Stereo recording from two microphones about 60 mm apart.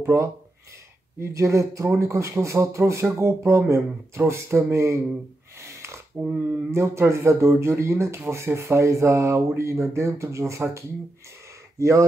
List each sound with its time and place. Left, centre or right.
0.0 s speech: right
5.6 s snort: right
6.2 s speech: right
6.7 s speech: right
11.8 s speech: right